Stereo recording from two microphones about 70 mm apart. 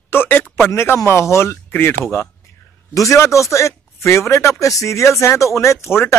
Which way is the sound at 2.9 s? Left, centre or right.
Left.